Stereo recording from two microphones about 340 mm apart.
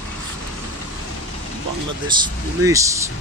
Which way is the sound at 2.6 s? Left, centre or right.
Centre.